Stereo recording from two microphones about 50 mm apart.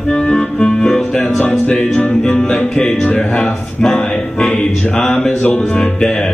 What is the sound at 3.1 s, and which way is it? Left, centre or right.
Music, left.